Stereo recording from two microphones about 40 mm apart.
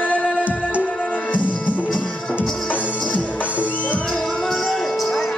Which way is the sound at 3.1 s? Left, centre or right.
Left.